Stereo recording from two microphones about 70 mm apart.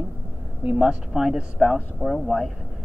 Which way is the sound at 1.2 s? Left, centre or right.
Centre.